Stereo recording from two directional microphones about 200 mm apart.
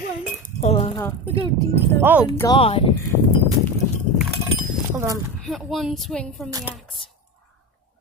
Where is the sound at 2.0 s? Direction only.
10° right (ahead or behind).